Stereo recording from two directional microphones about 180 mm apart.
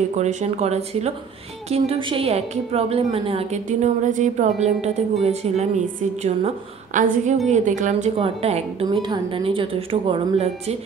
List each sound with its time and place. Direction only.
0.1 s a woman's voice: 40° right (ahead or behind)